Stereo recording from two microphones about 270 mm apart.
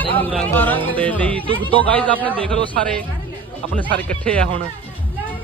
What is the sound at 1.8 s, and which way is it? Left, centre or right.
Speech, centre.